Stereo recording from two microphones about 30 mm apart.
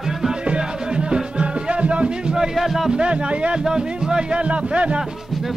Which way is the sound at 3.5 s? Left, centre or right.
Right.